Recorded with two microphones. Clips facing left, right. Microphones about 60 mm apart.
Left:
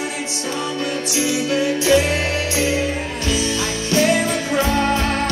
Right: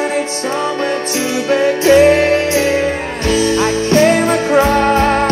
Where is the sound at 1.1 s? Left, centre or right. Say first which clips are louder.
Right 3 dB; right.